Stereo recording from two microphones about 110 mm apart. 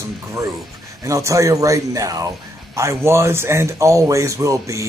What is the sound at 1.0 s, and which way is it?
Speech, 30° right (ahead or behind).